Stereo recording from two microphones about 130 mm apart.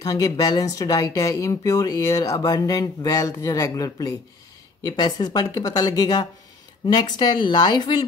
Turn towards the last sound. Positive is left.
turn(degrees=30)  # may be behind; listen again after turning